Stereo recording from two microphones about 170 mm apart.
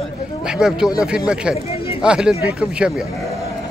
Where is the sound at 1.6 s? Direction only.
35° left (ahead or behind).